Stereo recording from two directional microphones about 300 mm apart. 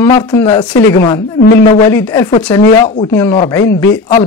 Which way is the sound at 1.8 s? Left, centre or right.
Centre.